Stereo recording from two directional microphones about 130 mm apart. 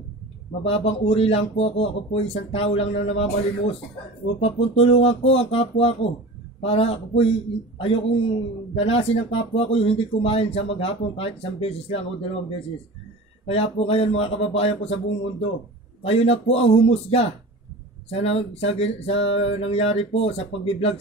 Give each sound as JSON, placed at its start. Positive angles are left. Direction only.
{"t": 0.7, "sound": "speech", "side_deg": 50}
{"t": 16.0, "sound": "speech", "side_deg": 50}